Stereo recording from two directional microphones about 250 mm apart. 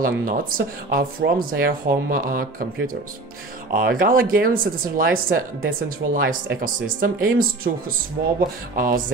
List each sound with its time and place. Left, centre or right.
0.0 s speech: right